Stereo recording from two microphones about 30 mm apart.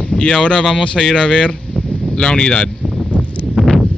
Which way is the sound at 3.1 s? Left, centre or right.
Left.